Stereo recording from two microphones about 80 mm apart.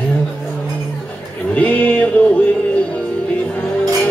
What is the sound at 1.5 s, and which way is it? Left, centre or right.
Music, centre.